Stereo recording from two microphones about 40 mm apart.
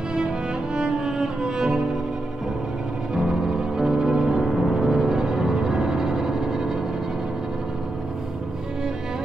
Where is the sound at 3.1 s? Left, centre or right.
Centre.